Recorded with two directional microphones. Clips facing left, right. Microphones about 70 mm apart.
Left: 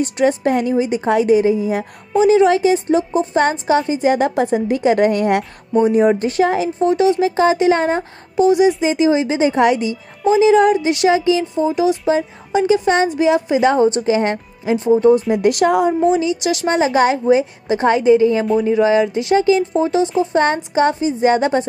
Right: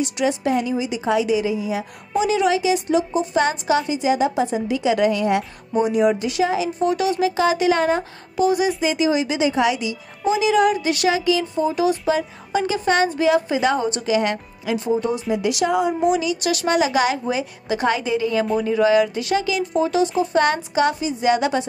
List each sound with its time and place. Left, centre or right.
0.0 s a woman's voice: left
2.2 s a woman's voice: left
5.9 s a woman's voice: left
6.8 s speech: left
15.3 s a woman's voice: left
16.0 s speech: left